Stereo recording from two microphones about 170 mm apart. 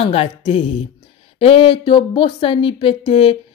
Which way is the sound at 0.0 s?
35° left (ahead or behind).